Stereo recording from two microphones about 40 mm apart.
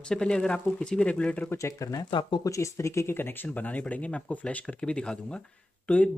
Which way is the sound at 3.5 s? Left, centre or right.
Left.